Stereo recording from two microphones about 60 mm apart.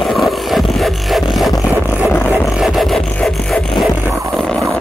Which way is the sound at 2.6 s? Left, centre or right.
Centre.